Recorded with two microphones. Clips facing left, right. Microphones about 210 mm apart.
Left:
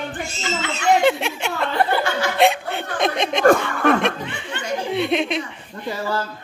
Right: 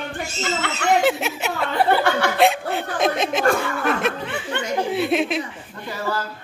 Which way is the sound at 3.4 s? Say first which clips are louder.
Left 8 dB; 40° left (ahead or behind).